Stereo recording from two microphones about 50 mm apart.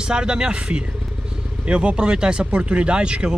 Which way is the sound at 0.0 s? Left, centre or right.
Centre.